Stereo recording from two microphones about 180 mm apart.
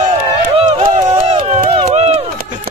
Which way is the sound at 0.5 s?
30° right (ahead or behind).